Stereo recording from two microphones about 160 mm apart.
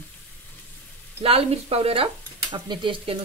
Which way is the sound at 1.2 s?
40° right (ahead or behind).